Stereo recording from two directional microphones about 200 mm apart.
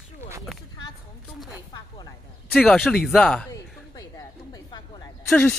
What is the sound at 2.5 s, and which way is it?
Speech, 5° left (ahead or behind).